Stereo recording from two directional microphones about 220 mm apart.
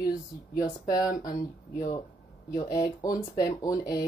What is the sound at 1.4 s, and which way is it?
Speech, 35° left (ahead or behind).